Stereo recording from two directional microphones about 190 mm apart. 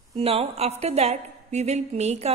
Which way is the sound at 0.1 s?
30° right (ahead or behind).